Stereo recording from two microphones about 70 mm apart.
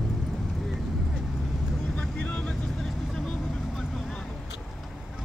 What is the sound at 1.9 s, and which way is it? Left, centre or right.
Vehicle, centre.